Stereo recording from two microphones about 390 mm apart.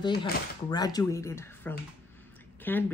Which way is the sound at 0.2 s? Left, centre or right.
Centre.